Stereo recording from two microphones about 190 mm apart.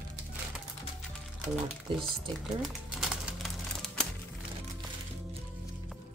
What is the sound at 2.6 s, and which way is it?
Crumpling, centre (ahead or behind).